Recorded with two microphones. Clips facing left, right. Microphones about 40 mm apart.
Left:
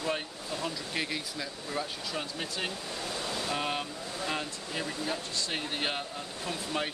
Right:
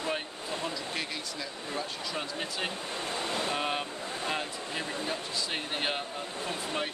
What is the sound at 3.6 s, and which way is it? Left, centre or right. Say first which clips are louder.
Vehicle: right 1 dB; centre.